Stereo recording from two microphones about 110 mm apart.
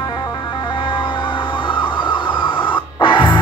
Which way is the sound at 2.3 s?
50° left (ahead or behind).